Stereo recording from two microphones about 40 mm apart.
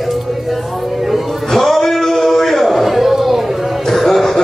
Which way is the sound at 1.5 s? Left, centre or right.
Centre.